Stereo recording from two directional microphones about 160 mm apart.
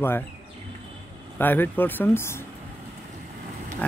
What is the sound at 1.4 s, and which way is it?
Speech, 10° left (ahead or behind).